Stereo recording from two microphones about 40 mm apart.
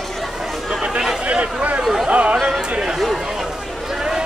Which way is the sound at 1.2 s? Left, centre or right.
Right.